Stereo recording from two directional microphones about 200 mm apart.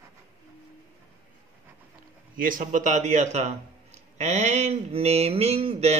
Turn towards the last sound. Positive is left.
turn(degrees=-30)  # may be behind; listen again after turning